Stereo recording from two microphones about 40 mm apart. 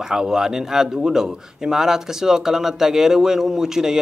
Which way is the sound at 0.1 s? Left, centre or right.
Centre.